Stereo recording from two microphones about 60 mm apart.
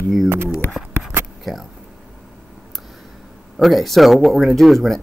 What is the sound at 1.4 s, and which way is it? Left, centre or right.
Speech, centre.